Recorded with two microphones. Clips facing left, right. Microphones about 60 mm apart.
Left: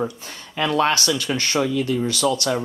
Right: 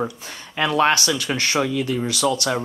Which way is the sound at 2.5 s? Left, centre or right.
Right.